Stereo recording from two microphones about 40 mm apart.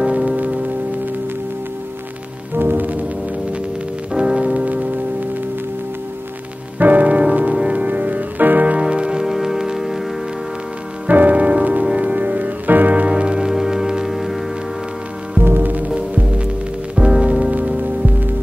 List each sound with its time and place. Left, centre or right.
0.0 s music: right
2.5 s music: right
4.1 s music: centre
4.6 s music: right
6.8 s music: right
8.7 s music: right
9.3 s music: centre
11.1 s music: right
13.0 s music: right
14.0 s music: centre
15.4 s music: right
16.9 s music: right
17.5 s music: right